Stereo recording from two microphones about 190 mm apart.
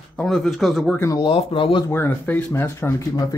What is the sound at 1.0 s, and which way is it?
Speech, 20° left (ahead or behind).